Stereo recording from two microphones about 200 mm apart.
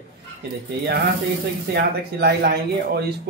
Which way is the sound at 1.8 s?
55° right (ahead or behind).